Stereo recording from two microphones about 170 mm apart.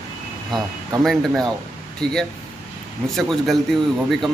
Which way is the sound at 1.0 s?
Centre (ahead or behind).